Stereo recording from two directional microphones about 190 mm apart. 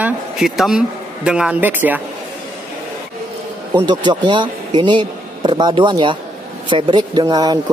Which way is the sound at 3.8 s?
25° right (ahead or behind).